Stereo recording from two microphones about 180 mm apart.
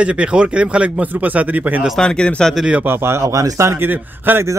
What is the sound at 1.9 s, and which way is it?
Speech, 5° left (ahead or behind).